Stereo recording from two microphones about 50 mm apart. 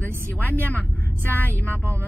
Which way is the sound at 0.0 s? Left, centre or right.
Left.